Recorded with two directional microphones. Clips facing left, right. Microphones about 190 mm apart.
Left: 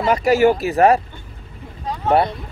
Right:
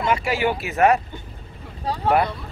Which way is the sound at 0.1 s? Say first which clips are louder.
Left 9 dB; 40° left (ahead or behind).